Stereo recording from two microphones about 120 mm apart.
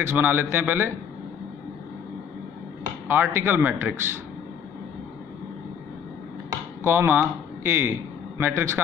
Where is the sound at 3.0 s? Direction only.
15° right (ahead or behind).